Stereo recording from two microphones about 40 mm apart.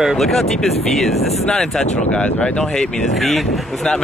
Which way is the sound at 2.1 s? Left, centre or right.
Left.